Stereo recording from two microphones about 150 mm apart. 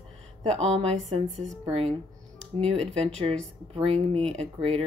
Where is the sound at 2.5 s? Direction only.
40° right (ahead or behind).